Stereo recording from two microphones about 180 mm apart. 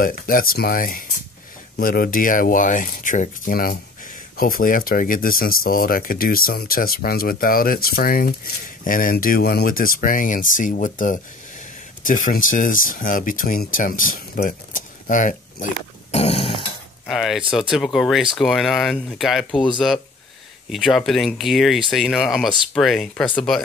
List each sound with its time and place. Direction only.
0.0 s speech: 55° left (ahead or behind); by 16.6 s 30° left (ahead or behind)
17.0 s speech: centre (ahead or behind)
19.5 s speech: 25° left (ahead or behind)
20.7 s speech: centre (ahead or behind)